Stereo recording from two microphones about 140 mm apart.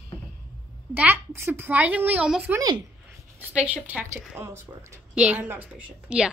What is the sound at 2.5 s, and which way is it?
Speech, 30° right (ahead or behind).